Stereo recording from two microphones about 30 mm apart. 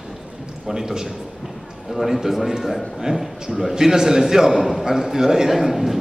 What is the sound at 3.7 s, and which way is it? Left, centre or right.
Speech, centre.